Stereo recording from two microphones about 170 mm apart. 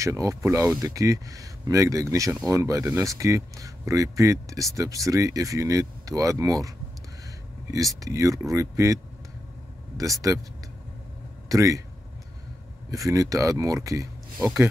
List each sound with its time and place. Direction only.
0.0 s speech: 20° right (ahead or behind)
7.7 s speech: 20° right (ahead or behind)
11.4 s speech: 20° right (ahead or behind)
12.9 s speech: 20° right (ahead or behind)